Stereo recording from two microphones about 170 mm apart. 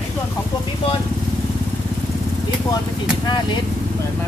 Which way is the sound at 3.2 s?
25° left (ahead or behind).